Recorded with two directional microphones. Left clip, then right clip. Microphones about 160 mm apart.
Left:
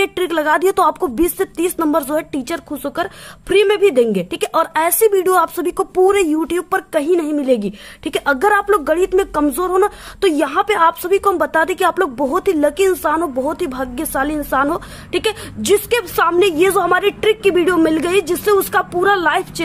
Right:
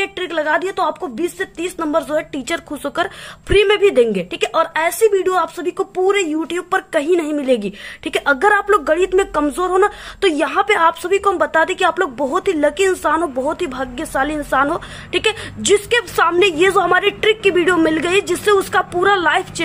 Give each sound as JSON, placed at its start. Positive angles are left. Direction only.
{"t": 0.0, "sound": "speech", "side_deg": 45}
{"t": 6.5, "sound": "a woman's voice", "side_deg": 30}